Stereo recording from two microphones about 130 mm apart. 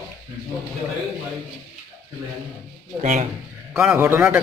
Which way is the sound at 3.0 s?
65° right (ahead or behind).